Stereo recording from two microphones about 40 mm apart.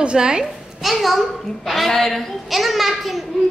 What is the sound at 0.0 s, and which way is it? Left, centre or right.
Speech, right.